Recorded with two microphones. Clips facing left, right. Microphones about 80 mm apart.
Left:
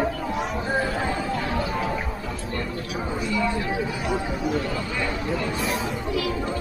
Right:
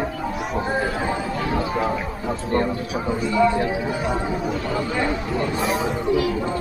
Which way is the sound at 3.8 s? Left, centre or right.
Right.